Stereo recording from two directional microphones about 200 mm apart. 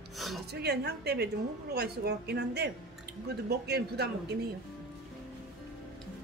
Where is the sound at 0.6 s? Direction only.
55° right (ahead or behind).